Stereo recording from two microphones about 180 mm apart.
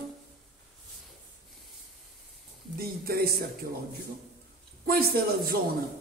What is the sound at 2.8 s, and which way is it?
Speech, 60° right (ahead or behind).